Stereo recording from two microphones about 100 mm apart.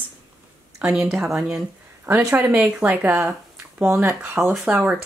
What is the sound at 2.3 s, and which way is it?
Speech, 15° right (ahead or behind).